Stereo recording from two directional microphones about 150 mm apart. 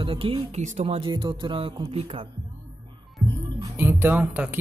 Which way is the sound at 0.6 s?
50° right (ahead or behind).